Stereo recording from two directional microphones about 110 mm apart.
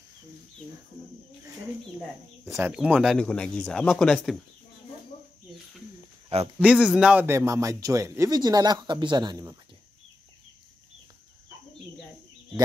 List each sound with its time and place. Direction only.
2.6 s speech: 10° right (ahead or behind)
3.2 s speech: 10° left (ahead or behind)
6.6 s speech: 10° right (ahead or behind)
7.2 s speech: 25° right (ahead or behind)